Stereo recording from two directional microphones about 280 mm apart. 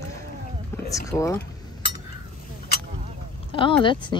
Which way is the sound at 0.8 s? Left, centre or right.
Centre.